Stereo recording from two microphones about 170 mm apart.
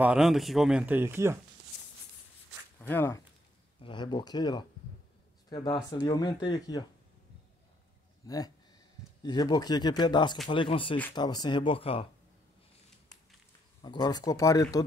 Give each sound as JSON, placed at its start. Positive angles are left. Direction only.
{"t": 0.0, "sound": "speech", "side_deg": -5}
{"t": 2.8, "sound": "speech", "side_deg": 10}
{"t": 3.8, "sound": "speech", "side_deg": 25}
{"t": 8.2, "sound": "speech", "side_deg": 20}
{"t": 13.8, "sound": "speech", "side_deg": 25}